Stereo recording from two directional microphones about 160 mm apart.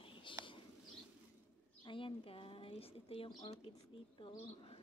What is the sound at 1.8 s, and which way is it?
Speech, 30° left (ahead or behind).